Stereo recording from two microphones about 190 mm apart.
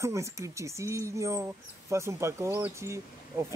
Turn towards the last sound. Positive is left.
turn(degrees=-15)  # may be behind; listen again after turning